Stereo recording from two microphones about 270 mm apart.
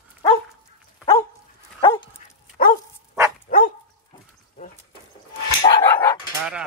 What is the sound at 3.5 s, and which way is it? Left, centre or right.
Dog, left.